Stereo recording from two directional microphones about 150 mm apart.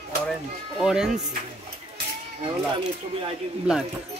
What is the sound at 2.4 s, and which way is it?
Speech, 35° right (ahead or behind).